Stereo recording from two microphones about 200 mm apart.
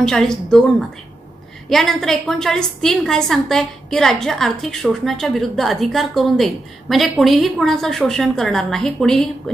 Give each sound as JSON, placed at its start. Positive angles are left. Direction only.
{"t": 0.0, "sound": "a woman's voice", "side_deg": 5}